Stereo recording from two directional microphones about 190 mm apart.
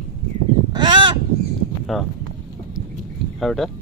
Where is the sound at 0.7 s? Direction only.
25° right (ahead or behind).